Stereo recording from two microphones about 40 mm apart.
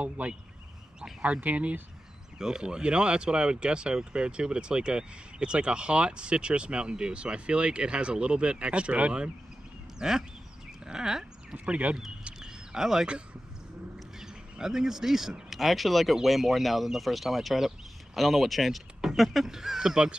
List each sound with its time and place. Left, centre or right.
1.2 s speech: right
2.3 s speech: centre; by 9.1 s right
9.9 s speech: centre
11.6 s speech: right
12.4 s a sound: centre
14.2 s speech: centre
15.5 s speech: centre